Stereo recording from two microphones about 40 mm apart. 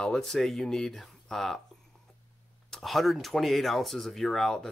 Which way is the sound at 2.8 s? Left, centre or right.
Centre.